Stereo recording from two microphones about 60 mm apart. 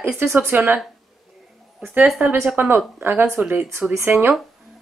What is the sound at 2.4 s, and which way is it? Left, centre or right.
Speech, right.